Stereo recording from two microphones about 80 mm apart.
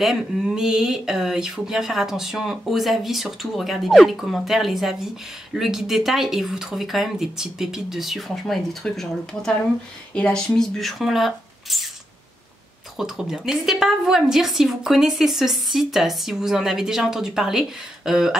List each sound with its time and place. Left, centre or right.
0.0 s speech: centre
12.9 s speech: centre